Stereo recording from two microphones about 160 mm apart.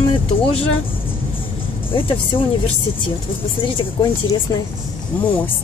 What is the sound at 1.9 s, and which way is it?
Speech, 35° left (ahead or behind).